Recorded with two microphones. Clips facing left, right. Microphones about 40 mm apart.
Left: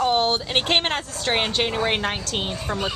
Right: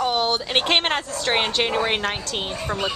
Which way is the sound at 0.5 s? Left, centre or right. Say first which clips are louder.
Right 1 dB; centre.